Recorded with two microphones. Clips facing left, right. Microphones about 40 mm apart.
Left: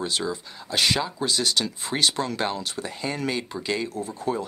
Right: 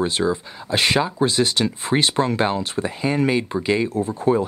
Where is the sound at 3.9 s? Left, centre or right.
Right.